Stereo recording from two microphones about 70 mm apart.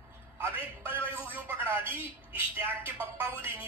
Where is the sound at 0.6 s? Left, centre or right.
Left.